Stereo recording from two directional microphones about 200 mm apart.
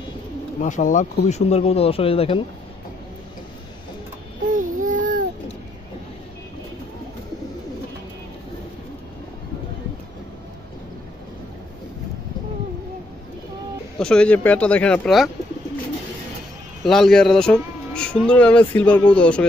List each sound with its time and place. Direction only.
0.6 s speech: 40° left (ahead or behind)
4.5 s child singing: 40° right (ahead or behind)
13.9 s speech: 5° left (ahead or behind)
16.8 s speech: centre (ahead or behind)